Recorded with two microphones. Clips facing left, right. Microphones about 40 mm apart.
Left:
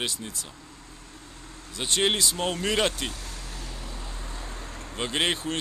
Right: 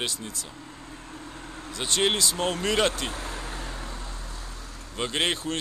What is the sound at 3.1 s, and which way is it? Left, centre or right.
Vehicle, right.